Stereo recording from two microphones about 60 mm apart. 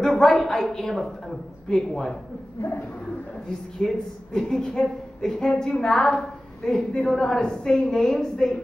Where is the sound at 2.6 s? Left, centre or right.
Left.